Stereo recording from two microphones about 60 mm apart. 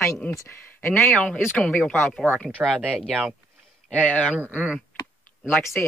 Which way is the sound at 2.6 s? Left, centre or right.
Centre.